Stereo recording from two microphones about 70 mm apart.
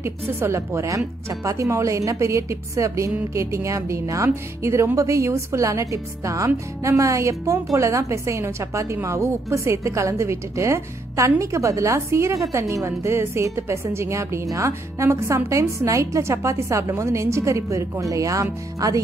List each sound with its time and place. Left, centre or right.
0.0 s speech: right